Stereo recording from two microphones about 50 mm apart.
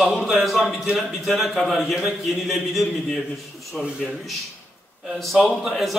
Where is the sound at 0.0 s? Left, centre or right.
Centre.